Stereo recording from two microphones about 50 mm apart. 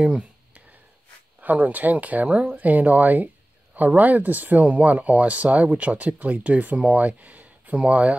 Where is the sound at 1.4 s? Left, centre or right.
Right.